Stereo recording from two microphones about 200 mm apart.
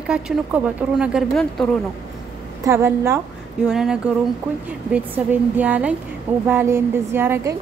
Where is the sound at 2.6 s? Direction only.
10° right (ahead or behind).